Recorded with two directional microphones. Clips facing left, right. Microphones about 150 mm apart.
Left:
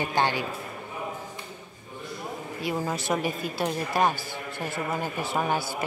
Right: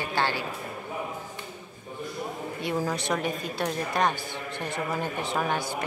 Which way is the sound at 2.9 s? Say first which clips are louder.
Left 1 dB; 5° left (ahead or behind).